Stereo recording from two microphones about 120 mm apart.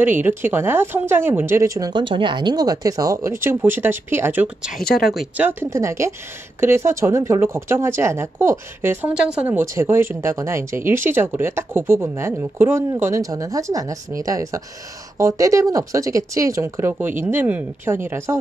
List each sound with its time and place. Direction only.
0.0 s speech: 15° right (ahead or behind)
4.7 s speech: centre (ahead or behind)
5.4 s speech: 20° right (ahead or behind)
9.1 s speech: 10° right (ahead or behind)